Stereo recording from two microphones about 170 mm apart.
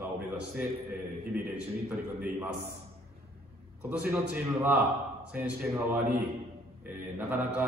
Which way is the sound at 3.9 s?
10° right (ahead or behind).